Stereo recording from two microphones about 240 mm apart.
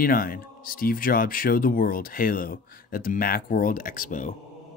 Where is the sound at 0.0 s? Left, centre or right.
Left.